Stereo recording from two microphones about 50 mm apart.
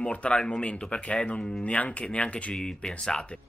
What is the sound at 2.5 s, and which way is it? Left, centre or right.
Speech, centre.